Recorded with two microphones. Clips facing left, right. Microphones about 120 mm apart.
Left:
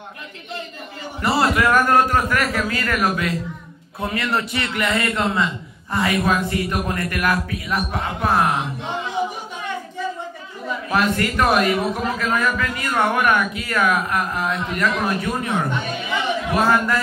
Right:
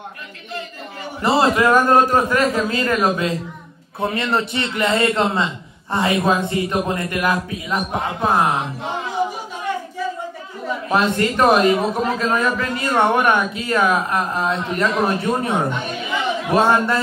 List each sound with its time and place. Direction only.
1.2 s a man's voice: 25° right (ahead or behind)
10.9 s a man's voice: 25° right (ahead or behind)